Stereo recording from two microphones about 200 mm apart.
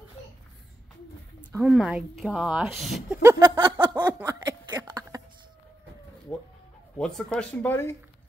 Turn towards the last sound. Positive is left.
turn(degrees=10)  # may be behind; listen again after turning